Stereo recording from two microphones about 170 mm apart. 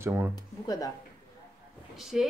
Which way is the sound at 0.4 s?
20° left (ahead or behind).